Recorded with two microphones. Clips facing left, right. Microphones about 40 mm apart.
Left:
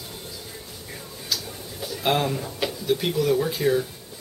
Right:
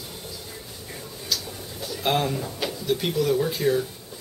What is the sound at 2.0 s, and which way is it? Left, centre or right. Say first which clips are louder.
Speech: left 1 dB; centre.